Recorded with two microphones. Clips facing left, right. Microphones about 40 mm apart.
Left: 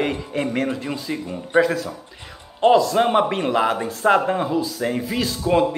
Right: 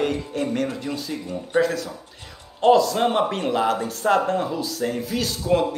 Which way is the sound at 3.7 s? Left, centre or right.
Centre.